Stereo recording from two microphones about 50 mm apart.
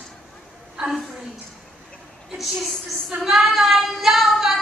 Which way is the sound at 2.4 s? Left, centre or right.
Centre.